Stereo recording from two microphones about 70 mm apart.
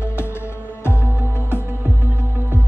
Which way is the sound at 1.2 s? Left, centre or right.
Right.